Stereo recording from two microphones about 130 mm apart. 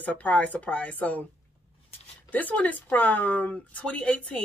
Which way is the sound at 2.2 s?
10° left (ahead or behind).